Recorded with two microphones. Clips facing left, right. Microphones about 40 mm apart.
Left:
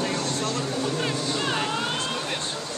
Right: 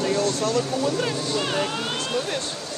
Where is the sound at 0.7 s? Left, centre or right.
Centre.